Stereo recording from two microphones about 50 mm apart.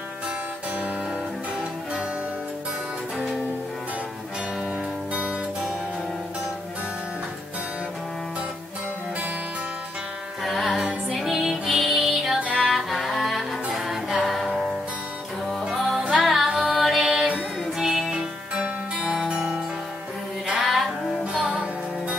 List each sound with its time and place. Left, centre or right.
5.1 s music: right
10.4 s music: centre
16.1 s music: centre
16.4 s music: centre
16.8 s music: centre
18.1 s music: centre
20.7 s music: centre
21.4 s music: centre